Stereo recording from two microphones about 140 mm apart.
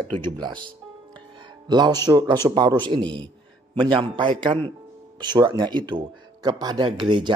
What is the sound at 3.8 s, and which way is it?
Speech, 35° right (ahead or behind).